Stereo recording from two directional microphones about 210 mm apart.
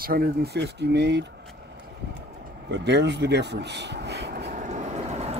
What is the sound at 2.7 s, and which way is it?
Speech, 55° right (ahead or behind).